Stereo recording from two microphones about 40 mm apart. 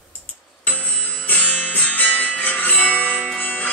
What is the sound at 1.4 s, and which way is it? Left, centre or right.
Music, left.